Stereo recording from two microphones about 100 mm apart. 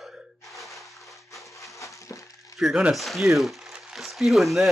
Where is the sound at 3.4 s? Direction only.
Centre (ahead or behind).